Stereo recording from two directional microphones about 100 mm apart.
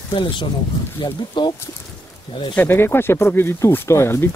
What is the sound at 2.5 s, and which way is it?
Speech, 20° left (ahead or behind).